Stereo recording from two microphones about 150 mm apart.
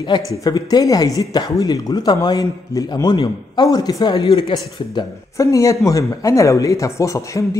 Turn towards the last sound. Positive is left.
turn(degrees=20)  # may be behind; listen again after turning